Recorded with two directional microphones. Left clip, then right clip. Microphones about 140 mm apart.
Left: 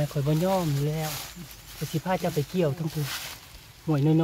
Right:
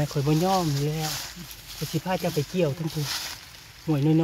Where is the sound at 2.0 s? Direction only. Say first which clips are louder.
Even; 20° right (ahead or behind).